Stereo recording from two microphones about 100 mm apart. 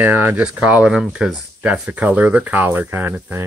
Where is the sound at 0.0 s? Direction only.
20° right (ahead or behind).